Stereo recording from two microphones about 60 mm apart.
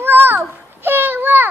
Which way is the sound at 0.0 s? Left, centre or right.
Right.